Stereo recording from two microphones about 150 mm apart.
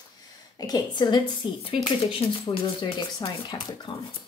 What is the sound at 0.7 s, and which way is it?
Speech, 30° left (ahead or behind).